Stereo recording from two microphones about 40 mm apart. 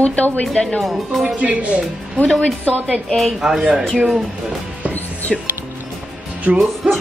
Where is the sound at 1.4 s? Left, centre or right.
Right.